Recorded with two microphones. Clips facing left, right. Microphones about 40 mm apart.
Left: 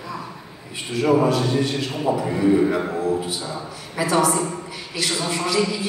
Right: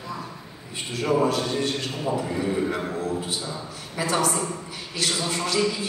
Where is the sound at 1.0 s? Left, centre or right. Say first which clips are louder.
Left 4 dB; centre.